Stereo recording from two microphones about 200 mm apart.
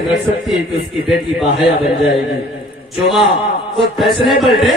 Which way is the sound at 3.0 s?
Centre (ahead or behind).